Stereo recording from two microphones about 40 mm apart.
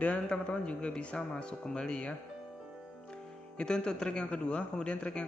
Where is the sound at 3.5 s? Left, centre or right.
Left.